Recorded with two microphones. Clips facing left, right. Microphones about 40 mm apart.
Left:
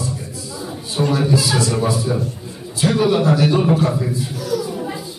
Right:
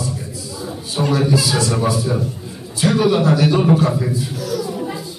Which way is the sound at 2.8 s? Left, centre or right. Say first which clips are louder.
Right 1 dB; centre.